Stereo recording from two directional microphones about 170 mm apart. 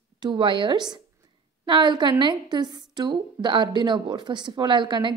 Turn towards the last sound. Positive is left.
turn(degrees=-25)  # may be behind; listen again after turning